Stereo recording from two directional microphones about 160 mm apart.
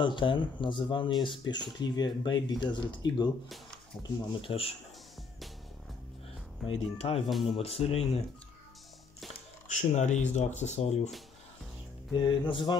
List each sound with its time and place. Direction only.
0.0 s speech: 30° left (ahead or behind)
4.4 s speech: 35° left (ahead or behind)
6.6 s speech: centre (ahead or behind)
7.0 s speech: 40° left (ahead or behind)
7.2 s speech: centre (ahead or behind)
7.5 s speech: 35° left (ahead or behind)
9.7 s speech: 50° left (ahead or behind)
12.2 s speech: 30° left (ahead or behind)